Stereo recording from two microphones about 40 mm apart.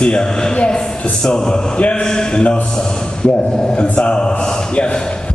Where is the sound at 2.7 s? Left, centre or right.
Centre.